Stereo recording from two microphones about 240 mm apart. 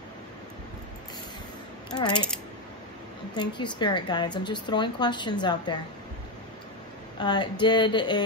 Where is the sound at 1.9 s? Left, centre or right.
Centre.